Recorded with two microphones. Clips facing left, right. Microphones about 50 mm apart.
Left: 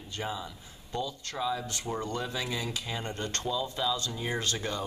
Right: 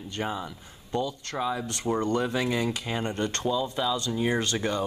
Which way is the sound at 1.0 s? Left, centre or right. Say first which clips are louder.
Right 4 dB; right.